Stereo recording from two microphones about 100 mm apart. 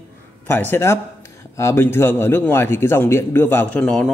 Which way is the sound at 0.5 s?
20° left (ahead or behind).